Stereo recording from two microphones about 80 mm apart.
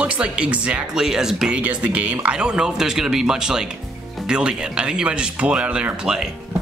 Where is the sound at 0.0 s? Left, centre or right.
Centre.